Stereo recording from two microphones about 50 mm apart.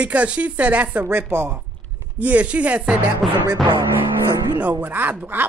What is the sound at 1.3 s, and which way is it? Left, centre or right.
Speech, right.